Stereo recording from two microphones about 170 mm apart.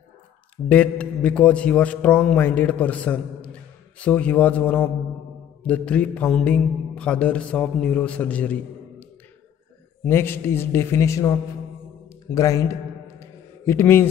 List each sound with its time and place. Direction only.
0.7 s mantra: 10° left (ahead or behind)
10.0 s mantra: 15° left (ahead or behind)
12.3 s a man's voice: 20° left (ahead or behind)
13.2 s a sound: 15° left (ahead or behind)